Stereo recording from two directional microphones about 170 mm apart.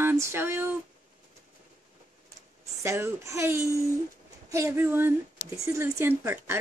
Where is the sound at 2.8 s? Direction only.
15° right (ahead or behind).